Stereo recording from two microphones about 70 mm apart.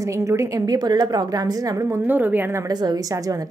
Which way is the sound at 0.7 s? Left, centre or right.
Right.